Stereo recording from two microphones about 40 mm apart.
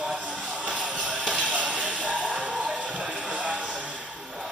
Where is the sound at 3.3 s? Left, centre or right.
Right.